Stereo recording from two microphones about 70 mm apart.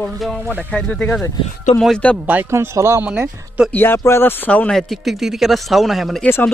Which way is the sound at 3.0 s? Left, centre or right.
Centre.